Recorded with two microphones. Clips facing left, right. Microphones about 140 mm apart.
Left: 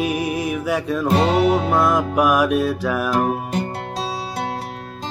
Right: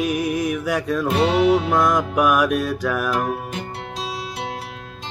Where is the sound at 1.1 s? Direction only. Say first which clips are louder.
Left 2 dB; 45° left (ahead or behind).